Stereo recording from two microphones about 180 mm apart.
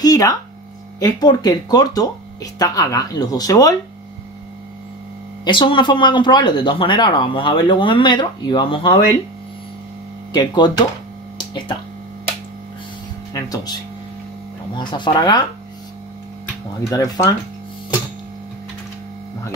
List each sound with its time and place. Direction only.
0.0 s a sound: 20° left (ahead or behind)
0.9 s speech: 20° left (ahead or behind)
5.4 s speech: 25° left (ahead or behind)
10.3 s speech: 25° left (ahead or behind)
11.3 s a sound: 25° left (ahead or behind)
13.3 s speech: 20° left (ahead or behind)
16.9 s speech: 20° left (ahead or behind)